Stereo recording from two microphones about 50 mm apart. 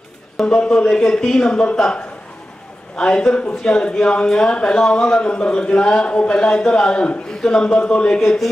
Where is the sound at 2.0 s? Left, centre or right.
Left.